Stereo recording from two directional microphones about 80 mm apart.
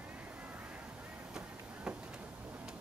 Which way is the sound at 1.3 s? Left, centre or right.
Centre.